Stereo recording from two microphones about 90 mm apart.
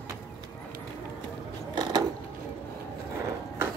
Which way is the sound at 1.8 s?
50° right (ahead or behind).